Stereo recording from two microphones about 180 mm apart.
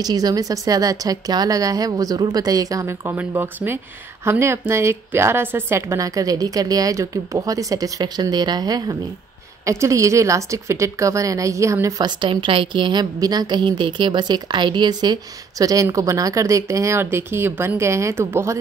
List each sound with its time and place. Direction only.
0.0 s a woman's voice: 20° right (ahead or behind)